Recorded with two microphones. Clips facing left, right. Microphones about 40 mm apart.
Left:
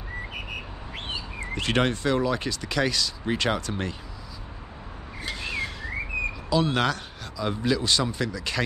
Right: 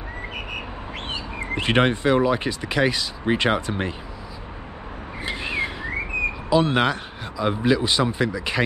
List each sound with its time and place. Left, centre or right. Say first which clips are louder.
1.4 s speech: right 5 dB; right
5.2 s a sound: right 5 dB; right
6.5 s speech: right 4 dB; right